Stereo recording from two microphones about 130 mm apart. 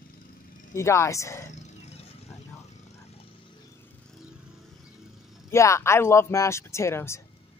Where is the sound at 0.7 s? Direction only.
20° left (ahead or behind).